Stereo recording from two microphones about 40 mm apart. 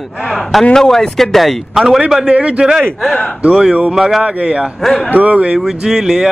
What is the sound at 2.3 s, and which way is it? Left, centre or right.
Speech, right.